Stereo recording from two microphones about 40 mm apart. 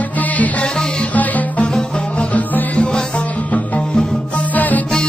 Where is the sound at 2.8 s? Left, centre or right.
Left.